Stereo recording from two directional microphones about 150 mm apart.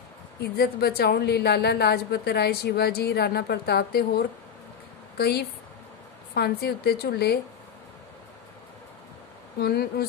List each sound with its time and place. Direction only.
0.6 s a woman's voice: 90° left
5.1 s a woman's voice: 90° left
9.6 s a woman's voice: 90° left